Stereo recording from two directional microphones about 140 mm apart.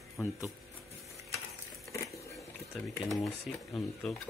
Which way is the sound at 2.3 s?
Centre (ahead or behind).